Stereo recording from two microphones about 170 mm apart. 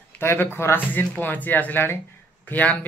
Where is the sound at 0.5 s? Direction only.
15° left (ahead or behind).